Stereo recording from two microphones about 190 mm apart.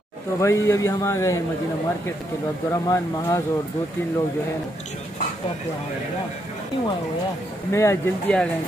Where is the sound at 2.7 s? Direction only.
15° left (ahead or behind).